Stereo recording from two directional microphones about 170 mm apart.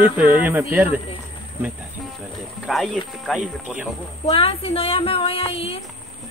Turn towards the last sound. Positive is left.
turn(degrees=35)  # may be behind; listen again after turning